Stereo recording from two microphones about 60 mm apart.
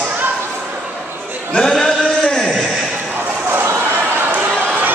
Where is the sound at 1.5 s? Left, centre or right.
Centre.